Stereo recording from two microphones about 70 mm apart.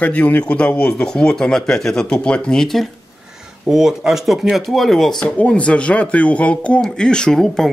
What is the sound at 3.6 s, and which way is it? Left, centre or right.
Speech, centre.